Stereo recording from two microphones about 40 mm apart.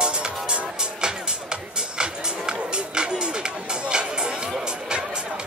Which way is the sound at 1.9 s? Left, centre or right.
Right.